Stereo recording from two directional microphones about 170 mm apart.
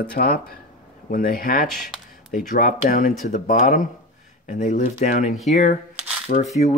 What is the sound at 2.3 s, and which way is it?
Speech, 55° left (ahead or behind).